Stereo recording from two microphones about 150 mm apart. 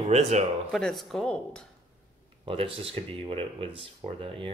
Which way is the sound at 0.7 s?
Centre (ahead or behind).